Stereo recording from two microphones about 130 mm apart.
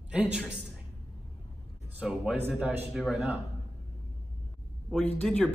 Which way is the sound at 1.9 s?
10° right (ahead or behind).